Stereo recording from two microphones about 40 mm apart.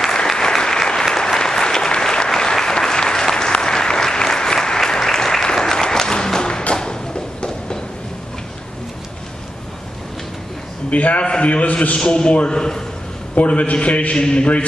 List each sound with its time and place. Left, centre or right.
0.0 s applause: centre
6.7 s a sound: centre
10.9 s a man's voice: left
12.0 s a man's voice: left
13.3 s a man's voice: left